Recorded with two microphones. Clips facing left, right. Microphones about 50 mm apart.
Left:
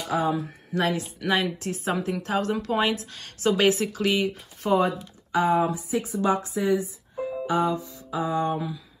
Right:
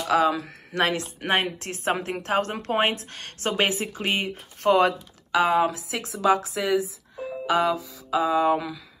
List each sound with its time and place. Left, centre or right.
0.0 s speech: right
0.7 s speech: right
3.5 s speech: right
4.1 s speech: right
4.6 s speech: right
5.3 s speech: right
7.2 s music: right